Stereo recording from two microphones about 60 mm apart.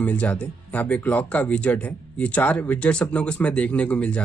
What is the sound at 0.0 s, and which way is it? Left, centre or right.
Speech, left.